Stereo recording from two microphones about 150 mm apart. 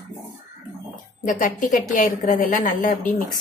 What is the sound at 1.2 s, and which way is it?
A woman's voice, 60° left (ahead or behind).